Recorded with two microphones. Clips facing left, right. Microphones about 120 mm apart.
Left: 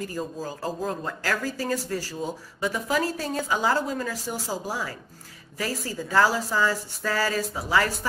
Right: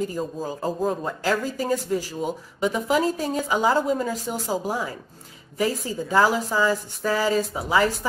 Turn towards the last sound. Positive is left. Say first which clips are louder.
# right 3 dB
turn(degrees=-20)  # may be behind; listen again after turning